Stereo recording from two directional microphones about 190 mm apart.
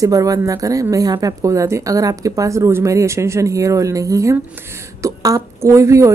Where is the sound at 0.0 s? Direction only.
20° right (ahead or behind).